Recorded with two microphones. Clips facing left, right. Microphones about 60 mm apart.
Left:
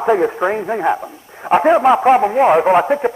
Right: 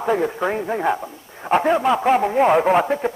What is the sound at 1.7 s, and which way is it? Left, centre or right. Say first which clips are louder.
A man's voice: left 6 dB; left.